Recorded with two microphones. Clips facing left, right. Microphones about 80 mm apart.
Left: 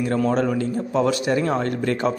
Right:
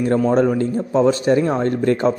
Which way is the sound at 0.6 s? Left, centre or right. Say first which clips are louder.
Right 4 dB; right.